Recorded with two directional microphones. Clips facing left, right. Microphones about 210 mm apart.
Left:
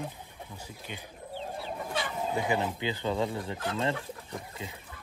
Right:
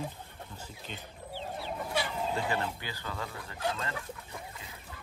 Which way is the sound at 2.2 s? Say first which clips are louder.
Left 3 dB; 15° left (ahead or behind).